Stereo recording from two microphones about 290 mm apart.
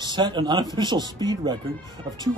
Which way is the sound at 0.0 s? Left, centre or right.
Centre.